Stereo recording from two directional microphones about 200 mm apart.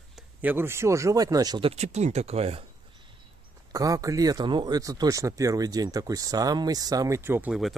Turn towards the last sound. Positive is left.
turn(degrees=-5)  # may be behind; listen again after turning